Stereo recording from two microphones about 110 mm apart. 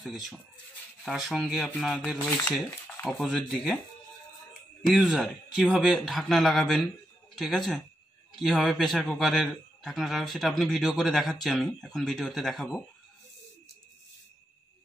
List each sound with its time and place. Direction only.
0.0 s a man's voice: centre (ahead or behind)
3.1 s a man's voice: centre (ahead or behind)
4.8 s a man's voice: centre (ahead or behind)